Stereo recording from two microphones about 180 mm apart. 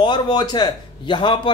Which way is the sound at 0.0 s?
25° left (ahead or behind).